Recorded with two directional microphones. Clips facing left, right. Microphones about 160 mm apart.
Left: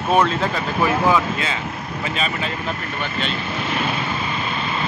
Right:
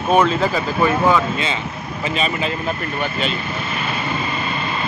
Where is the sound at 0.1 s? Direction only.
Centre (ahead or behind).